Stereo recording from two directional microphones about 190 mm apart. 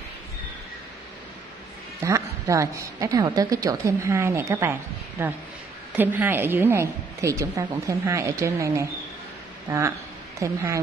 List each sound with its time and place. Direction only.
2.0 s a woman's voice: 15° right (ahead or behind)